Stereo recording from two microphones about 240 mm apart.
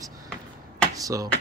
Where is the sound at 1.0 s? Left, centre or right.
Centre.